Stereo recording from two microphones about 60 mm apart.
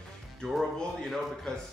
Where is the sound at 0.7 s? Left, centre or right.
Centre.